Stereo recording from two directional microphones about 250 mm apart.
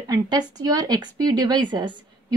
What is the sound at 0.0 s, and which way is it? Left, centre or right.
A woman's voice, centre.